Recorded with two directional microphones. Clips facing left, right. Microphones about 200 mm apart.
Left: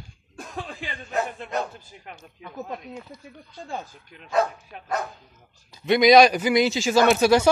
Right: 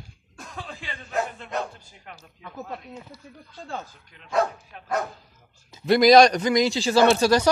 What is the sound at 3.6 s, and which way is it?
Speech, 15° left (ahead or behind).